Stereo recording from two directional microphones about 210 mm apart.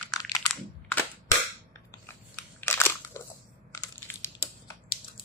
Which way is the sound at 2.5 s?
10° left (ahead or behind).